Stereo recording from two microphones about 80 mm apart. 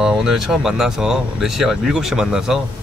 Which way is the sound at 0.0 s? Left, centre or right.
Centre.